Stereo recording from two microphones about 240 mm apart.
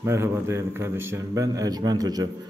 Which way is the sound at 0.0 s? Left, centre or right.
Centre.